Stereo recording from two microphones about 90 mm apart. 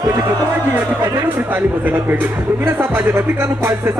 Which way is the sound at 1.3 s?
20° right (ahead or behind).